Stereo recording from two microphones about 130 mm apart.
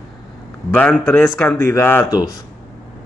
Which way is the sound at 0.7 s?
15° left (ahead or behind).